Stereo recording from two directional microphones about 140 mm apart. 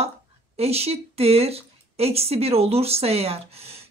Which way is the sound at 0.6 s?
45° right (ahead or behind).